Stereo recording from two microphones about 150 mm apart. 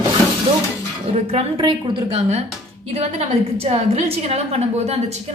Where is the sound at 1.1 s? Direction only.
40° right (ahead or behind).